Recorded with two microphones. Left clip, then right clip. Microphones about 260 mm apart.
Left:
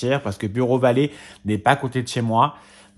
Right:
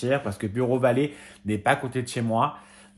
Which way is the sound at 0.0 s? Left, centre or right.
Left.